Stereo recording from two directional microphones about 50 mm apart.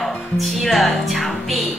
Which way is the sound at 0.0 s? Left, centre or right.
Centre.